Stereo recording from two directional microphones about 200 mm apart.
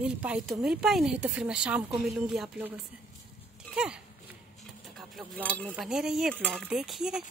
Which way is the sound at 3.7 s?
5° right (ahead or behind).